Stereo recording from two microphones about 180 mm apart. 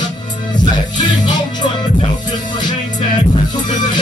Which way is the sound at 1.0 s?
25° left (ahead or behind).